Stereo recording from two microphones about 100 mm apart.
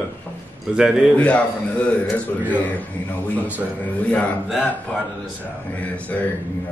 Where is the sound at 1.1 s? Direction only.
10° left (ahead or behind).